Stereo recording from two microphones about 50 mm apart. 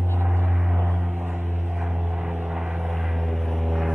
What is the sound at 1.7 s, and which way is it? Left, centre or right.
Vehicle, centre.